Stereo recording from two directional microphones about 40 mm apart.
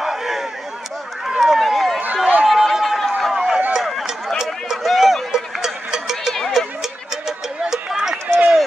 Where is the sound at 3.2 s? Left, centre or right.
Centre.